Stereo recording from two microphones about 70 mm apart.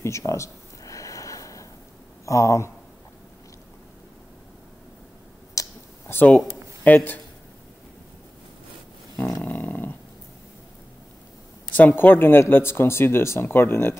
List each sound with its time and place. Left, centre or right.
0.0 s a sound: left
2.2 s speech: left
5.6 s a sound: left
6.2 s speech: left
9.4 s dog: left
11.7 s speech: left